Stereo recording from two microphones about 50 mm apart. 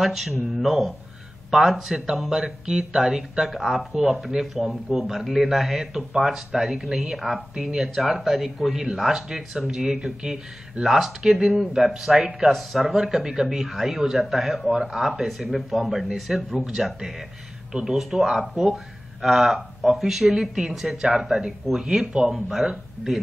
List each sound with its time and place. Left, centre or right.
0.0 s a man's voice: centre